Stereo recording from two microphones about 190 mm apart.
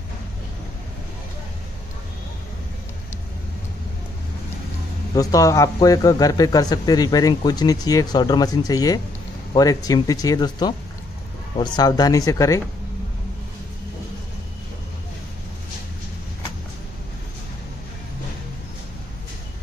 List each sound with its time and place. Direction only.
5.1 s a man's voice: 20° left (ahead or behind)